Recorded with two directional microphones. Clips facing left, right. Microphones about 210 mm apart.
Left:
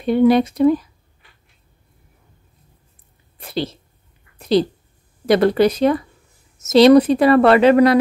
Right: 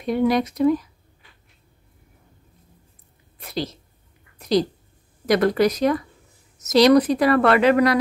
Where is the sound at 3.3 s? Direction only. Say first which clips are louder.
Left 4 dB; 30° left (ahead or behind).